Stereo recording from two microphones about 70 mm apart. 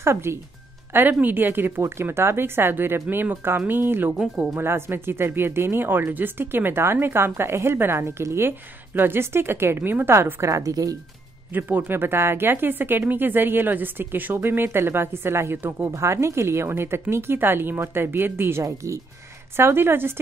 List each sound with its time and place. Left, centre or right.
0.0 s speech: right
10.4 s a woman's voice: right
11.5 s speech: right
15.9 s speech: right
18.6 s speech: right
19.5 s speech: right